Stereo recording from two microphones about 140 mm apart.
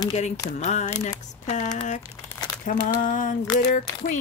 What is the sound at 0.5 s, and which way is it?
Speech, 55° left (ahead or behind).